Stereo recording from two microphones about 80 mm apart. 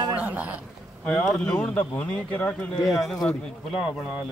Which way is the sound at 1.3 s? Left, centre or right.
Centre.